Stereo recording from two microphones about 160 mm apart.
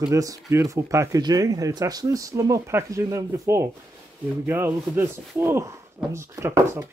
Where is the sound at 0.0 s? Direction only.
20° right (ahead or behind).